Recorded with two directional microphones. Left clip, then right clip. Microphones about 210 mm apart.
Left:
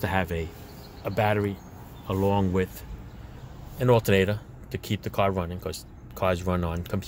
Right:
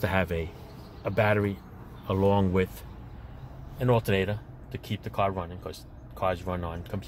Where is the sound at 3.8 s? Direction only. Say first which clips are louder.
Left 4 dB; 20° left (ahead or behind).